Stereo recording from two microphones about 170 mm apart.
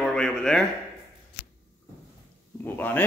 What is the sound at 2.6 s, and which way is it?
Speech, 10° left (ahead or behind).